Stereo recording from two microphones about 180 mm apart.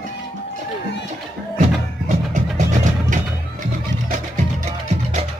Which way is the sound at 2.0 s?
40° right (ahead or behind).